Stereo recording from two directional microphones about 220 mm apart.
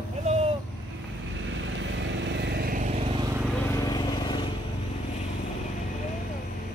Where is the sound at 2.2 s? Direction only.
50° right (ahead or behind); by 3.0 s 35° right (ahead or behind).